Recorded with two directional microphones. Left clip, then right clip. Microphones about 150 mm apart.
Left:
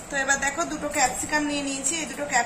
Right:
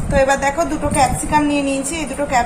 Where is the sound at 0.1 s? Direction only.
20° right (ahead or behind).